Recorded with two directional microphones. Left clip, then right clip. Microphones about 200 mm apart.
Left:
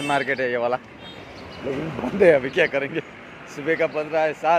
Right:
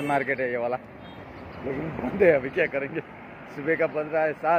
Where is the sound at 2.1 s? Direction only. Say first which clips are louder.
Left 4 dB; 30° left (ahead or behind).